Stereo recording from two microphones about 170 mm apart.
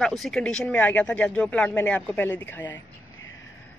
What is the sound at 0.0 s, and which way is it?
Speech, centre (ahead or behind).